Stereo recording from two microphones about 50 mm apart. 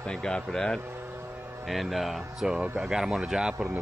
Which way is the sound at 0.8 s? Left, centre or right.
Right.